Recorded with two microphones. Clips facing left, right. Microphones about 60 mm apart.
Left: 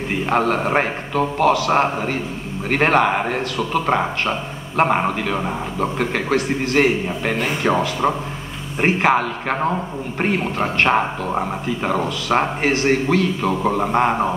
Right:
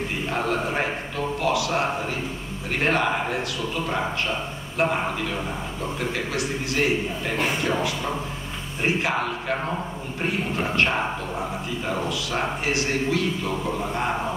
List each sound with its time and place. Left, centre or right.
0.3 s a man's voice: left